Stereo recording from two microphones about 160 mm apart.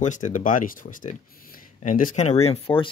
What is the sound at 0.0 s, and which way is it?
Speech, 50° left (ahead or behind).